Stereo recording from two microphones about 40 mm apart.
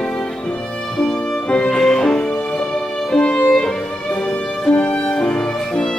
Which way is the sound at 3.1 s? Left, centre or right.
Left.